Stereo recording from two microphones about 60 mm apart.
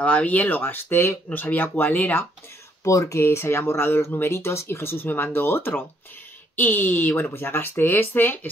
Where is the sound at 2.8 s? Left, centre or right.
Left.